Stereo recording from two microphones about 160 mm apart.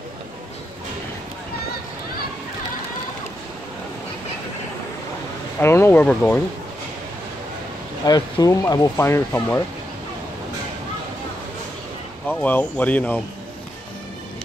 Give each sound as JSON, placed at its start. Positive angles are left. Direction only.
{"t": 5.6, "sound": "speech", "side_deg": 15}
{"t": 8.0, "sound": "speech", "side_deg": 25}
{"t": 12.3, "sound": "speech", "side_deg": 10}